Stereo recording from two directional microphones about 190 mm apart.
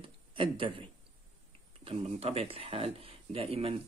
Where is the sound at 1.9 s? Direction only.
30° right (ahead or behind).